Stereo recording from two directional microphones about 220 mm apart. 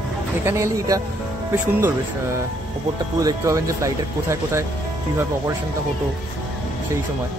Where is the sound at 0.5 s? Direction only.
15° right (ahead or behind).